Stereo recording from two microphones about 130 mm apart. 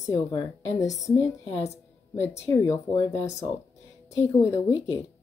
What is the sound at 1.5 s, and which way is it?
Speech, 60° left (ahead or behind).